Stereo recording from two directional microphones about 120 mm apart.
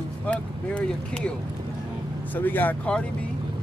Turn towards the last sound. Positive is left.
turn(degrees=10)  # may be behind; listen again after turning